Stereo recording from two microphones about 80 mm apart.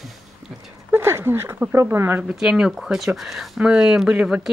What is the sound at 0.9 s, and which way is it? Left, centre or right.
Speech, right.